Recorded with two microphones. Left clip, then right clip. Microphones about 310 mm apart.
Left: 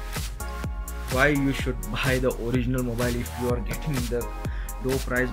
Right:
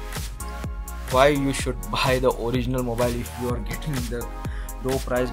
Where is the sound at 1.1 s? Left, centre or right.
Centre.